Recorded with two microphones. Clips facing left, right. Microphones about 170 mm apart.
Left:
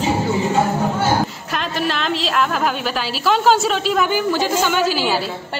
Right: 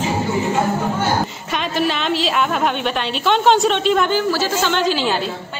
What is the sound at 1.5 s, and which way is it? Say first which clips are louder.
A woman's voice: right 5 dB; centre (ahead or behind).